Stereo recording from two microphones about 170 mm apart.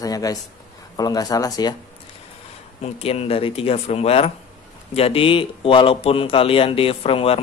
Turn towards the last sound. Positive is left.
turn(degrees=35)  # may be behind; listen again after turning